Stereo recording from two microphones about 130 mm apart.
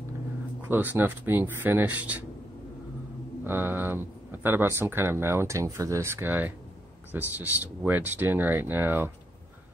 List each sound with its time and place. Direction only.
0.7 s speech: 15° right (ahead or behind)
3.4 s speech: 15° right (ahead or behind)